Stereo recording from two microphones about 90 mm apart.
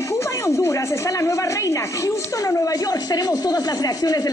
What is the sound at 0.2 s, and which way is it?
Speech, 35° left (ahead or behind).